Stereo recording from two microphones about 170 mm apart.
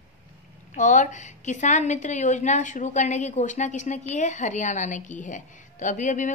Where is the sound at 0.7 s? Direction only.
45° left (ahead or behind).